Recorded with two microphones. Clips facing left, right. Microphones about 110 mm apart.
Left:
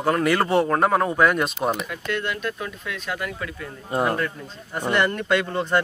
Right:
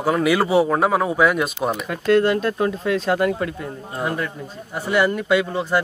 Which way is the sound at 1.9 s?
35° right (ahead or behind).